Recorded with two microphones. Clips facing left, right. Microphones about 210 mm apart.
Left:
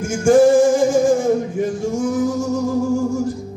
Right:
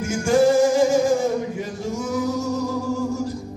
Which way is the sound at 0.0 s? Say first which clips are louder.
Left 5 dB; 50° left (ahead or behind).